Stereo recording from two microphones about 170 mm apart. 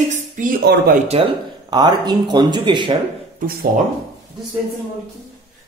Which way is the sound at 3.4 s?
60° right (ahead or behind).